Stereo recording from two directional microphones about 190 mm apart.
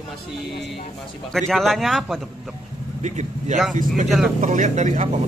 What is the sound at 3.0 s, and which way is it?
A man's voice, 40° right (ahead or behind).